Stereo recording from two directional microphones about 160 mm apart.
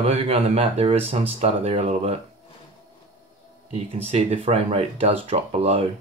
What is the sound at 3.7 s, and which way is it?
Speech, 40° right (ahead or behind).